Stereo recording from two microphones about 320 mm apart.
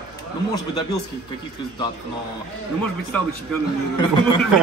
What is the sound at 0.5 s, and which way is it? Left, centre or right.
Speech, centre.